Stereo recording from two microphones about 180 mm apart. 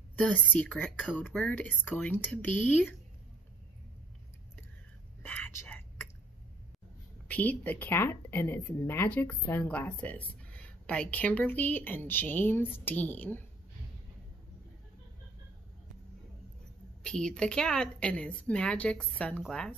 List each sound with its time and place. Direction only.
0.2 s speech: 5° left (ahead or behind)
5.2 s whispering: 10° left (ahead or behind)
7.2 s speech: 10° left (ahead or behind)
17.0 s a woman's voice: 5° left (ahead or behind)